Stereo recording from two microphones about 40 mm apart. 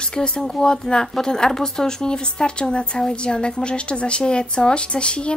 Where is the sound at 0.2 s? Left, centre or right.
Centre.